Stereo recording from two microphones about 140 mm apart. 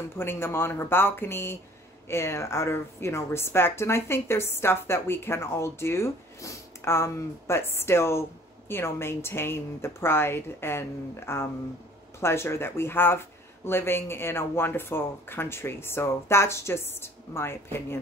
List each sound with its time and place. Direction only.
0.2 s a woman's voice: 15° left (ahead or behind)